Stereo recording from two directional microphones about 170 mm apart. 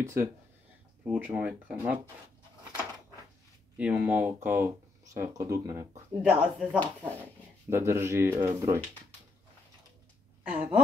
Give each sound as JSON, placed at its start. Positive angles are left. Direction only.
{"t": 0.0, "sound": "speech", "side_deg": -15}
{"t": 3.7, "sound": "speech", "side_deg": -10}
{"t": 6.2, "sound": "speech", "side_deg": -5}
{"t": 10.5, "sound": "speech", "side_deg": -10}